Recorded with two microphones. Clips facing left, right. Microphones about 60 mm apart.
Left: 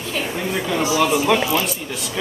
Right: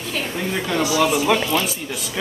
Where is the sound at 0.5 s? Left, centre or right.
Centre.